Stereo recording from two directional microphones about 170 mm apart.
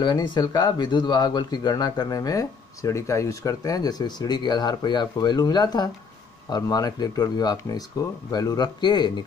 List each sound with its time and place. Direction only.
0.0 s speech: 25° left (ahead or behind)